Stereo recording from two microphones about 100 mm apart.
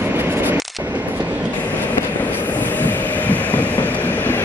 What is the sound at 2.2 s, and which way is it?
Train, 15° left (ahead or behind).